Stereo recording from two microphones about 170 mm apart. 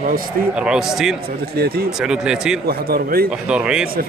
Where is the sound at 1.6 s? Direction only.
65° right (ahead or behind).